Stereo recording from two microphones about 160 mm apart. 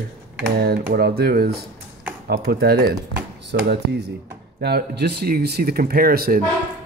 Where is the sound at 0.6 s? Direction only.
75° right (ahead or behind).